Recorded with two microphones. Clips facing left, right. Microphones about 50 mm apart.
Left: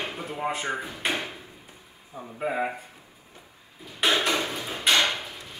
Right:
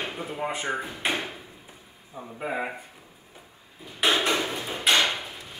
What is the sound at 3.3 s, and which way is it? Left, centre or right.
Drawer open or close, centre.